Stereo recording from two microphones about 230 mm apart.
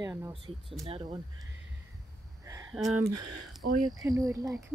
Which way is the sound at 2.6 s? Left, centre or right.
Centre.